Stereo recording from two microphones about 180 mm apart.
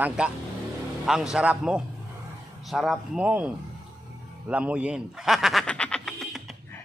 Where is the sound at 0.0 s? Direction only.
5° right (ahead or behind).